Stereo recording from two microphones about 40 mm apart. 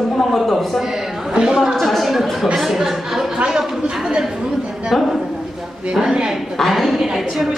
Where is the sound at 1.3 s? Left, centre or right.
Centre.